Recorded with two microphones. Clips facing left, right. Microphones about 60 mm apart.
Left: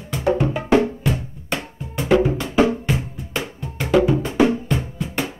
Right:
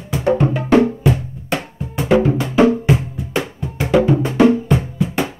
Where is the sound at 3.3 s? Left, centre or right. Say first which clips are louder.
Right 5 dB; centre.